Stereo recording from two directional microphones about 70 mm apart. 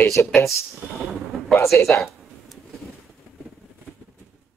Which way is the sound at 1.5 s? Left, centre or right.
Left.